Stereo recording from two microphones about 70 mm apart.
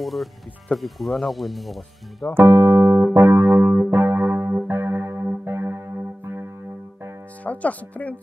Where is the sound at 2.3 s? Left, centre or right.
Right.